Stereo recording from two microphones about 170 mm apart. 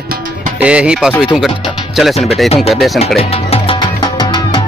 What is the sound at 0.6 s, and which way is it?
Speech, 5° right (ahead or behind).